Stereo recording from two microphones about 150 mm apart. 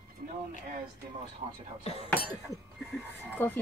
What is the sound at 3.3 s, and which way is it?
Speech, 10° left (ahead or behind).